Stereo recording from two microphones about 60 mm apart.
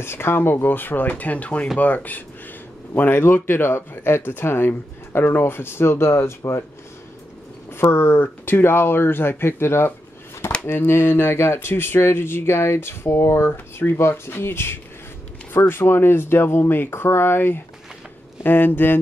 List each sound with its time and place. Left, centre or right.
0.0 s speech: left
7.7 s speech: left
13.5 s speech: left